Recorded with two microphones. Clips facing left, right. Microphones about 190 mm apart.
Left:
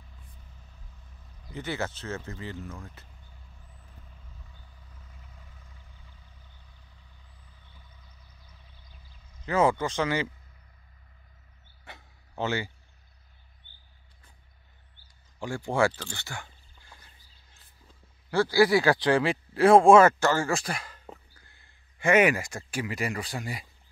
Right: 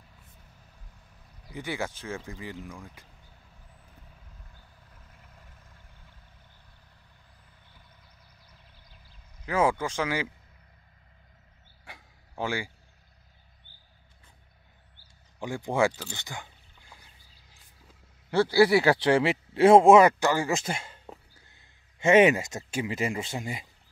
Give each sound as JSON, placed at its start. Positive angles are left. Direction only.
{"t": 1.5, "sound": "speech", "side_deg": -10}
{"t": 9.5, "sound": "speech", "side_deg": -10}
{"t": 11.8, "sound": "a sound", "side_deg": -10}
{"t": 15.3, "sound": "speech", "side_deg": -15}
{"t": 18.3, "sound": "speech", "side_deg": -25}